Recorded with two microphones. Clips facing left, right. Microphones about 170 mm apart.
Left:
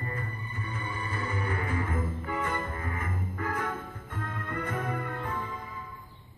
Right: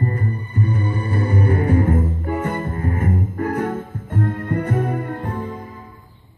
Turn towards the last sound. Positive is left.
turn(degrees=-45)  # may be behind; listen again after turning